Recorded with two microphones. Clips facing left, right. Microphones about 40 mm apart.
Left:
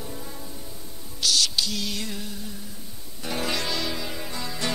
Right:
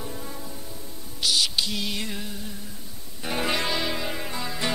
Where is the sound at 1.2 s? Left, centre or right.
Centre.